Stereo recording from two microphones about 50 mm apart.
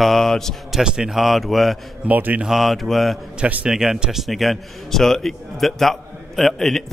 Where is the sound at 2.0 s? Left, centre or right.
Right.